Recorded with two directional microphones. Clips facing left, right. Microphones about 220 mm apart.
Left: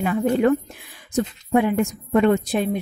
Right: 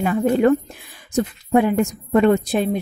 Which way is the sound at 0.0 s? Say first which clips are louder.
Right 2 dB; 40° right (ahead or behind).